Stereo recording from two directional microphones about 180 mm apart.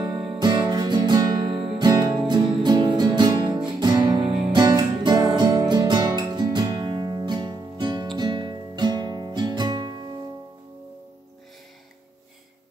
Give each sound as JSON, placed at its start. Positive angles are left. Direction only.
{"t": 0.2, "sound": "music", "side_deg": -25}